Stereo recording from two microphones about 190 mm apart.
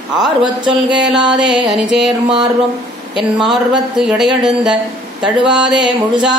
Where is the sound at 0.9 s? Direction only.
5° right (ahead or behind).